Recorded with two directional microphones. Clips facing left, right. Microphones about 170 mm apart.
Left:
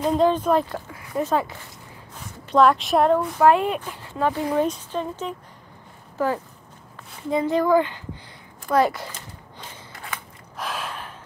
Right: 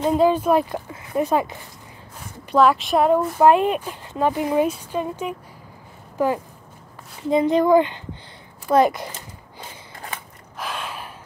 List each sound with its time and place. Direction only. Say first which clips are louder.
0.1 s speech: right 2 dB; 10° right (ahead or behind)
2.5 s speech: even; 5° right (ahead or behind)
3.3 s speech: right 3 dB; 20° right (ahead or behind)
10.6 s gasp: even; centre (ahead or behind)